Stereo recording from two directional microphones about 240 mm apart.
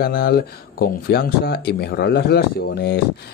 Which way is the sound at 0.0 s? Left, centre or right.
Left.